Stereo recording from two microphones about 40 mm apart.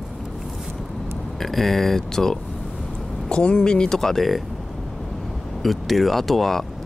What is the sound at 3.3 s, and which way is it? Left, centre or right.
Speech, left.